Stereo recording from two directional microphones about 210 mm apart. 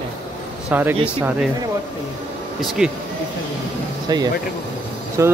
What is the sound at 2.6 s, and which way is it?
Speech, centre (ahead or behind).